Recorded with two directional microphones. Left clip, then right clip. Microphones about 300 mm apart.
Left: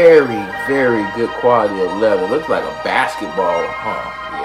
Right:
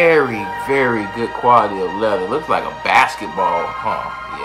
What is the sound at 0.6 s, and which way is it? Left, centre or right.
Speech, right.